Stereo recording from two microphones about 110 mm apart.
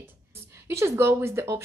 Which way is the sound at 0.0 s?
20° right (ahead or behind).